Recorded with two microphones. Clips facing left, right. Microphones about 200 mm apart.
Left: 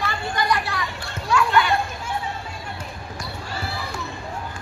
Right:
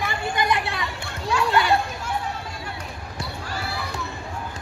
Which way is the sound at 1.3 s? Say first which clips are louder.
Left 1 dB; 35° right (ahead or behind).